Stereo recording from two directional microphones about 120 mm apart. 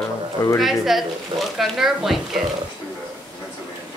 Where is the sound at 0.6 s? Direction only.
Centre (ahead or behind).